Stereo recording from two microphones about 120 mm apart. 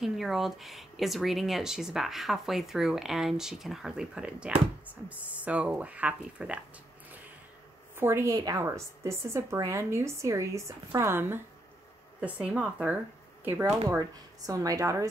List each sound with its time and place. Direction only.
0.0 s speech: centre (ahead or behind)
7.9 s a woman's voice: 20° right (ahead or behind)
13.4 s a woman's voice: 20° right (ahead or behind)